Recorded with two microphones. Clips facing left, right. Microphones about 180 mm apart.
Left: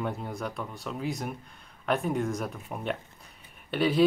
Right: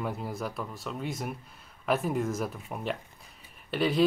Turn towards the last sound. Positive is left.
turn(degrees=0)  # may be behind; listen again after turning